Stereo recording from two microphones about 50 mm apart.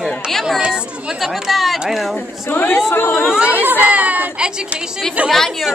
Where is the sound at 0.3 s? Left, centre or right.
Centre.